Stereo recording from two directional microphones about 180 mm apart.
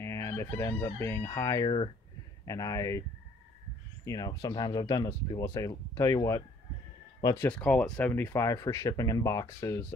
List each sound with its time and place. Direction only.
0.0 s crowing: 15° left (ahead or behind)
2.4 s speech: 20° left (ahead or behind)
4.0 s speech: 20° left (ahead or behind)
7.4 s speech: 5° left (ahead or behind)